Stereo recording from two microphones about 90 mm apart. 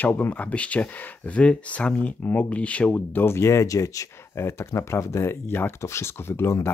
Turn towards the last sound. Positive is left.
turn(degrees=30)  # may be behind; listen again after turning